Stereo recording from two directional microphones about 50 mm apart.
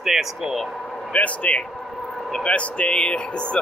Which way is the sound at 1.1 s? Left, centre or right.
Left.